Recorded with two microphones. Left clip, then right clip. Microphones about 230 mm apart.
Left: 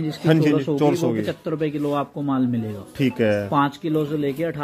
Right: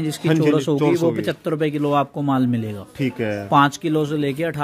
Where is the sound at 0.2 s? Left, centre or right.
Centre.